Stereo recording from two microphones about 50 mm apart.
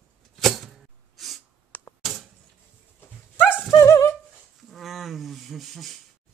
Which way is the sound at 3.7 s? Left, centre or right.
Left.